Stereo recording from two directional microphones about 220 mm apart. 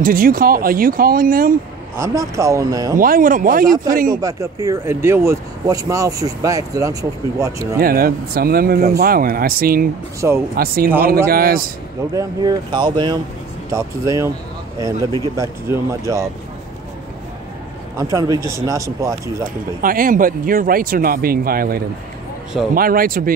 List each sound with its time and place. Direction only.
0.0 s speech: 40° right (ahead or behind)
2.0 s speech: 15° right (ahead or behind)
3.0 s speech: 40° right (ahead or behind)
3.6 s speech: 15° right (ahead or behind)
7.8 s speech: 40° right (ahead or behind)
12.1 s speech: 15° right (ahead or behind)
17.9 s speech: 15° right (ahead or behind)
19.8 s speech: 40° right (ahead or behind)